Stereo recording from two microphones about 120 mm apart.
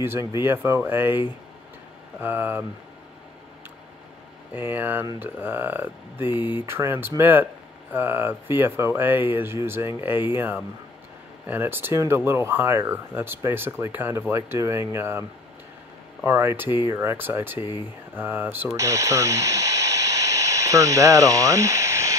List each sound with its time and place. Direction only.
0.0 s speech: 20° right (ahead or behind)
4.6 s speech: 15° right (ahead or behind)
16.3 s speech: 20° right (ahead or behind)
18.8 s radio: 25° right (ahead or behind)